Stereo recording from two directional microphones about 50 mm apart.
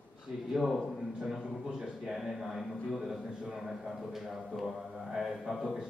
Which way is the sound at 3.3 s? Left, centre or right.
Centre.